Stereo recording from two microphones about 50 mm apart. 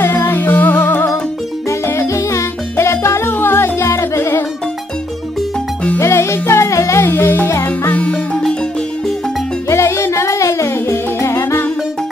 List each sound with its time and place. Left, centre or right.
0.0 s music: left
2.0 s music: left
3.3 s music: left
3.9 s music: left
4.2 s music: left
5.9 s music: left
7.2 s music: left
7.9 s music: left
9.7 s music: left